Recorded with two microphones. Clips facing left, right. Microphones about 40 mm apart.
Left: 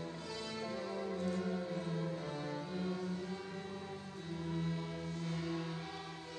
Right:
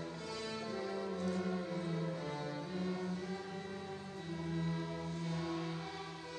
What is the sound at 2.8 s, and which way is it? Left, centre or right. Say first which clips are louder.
Music: right 2 dB; right.